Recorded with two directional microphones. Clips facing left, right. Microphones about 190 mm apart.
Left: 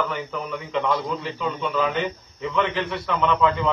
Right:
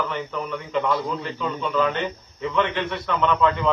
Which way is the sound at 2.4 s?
Centre (ahead or behind).